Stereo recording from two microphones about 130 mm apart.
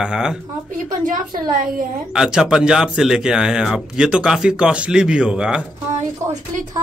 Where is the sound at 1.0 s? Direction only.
90° right.